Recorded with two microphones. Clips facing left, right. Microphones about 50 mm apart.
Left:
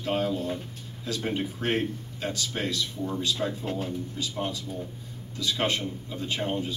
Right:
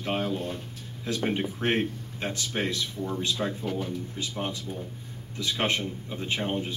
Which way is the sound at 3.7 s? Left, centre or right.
Centre.